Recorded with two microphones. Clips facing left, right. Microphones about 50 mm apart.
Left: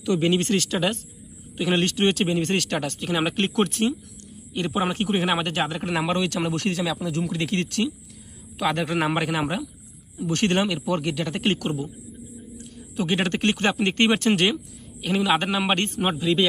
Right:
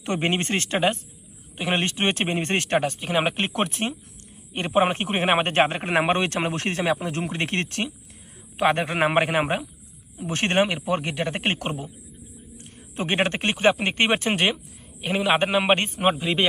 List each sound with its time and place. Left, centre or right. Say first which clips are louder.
0.0 s speech: left 3 dB; right
4.6 s speech: right 3 dB; right
12.9 s speech: even; right